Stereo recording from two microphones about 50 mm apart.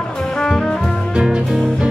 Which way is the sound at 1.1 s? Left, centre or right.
Centre.